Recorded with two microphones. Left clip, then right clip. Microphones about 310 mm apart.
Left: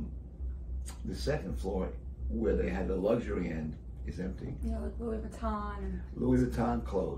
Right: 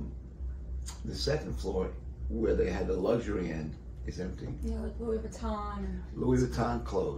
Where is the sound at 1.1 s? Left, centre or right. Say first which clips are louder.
Right 2 dB; centre.